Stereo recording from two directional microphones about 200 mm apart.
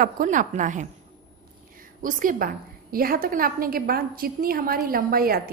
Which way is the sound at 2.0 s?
40° right (ahead or behind).